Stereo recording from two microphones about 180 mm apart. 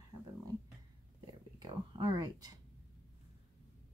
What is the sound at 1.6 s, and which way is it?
Speech, 25° right (ahead or behind).